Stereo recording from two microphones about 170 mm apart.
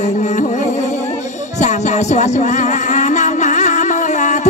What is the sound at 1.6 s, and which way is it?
Music, 45° left (ahead or behind).